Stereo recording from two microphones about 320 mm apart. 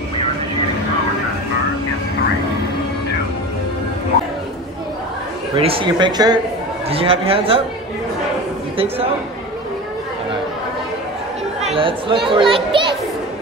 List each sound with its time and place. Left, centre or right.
5.6 s speech: centre
8.7 s speech: centre
11.6 s speech: centre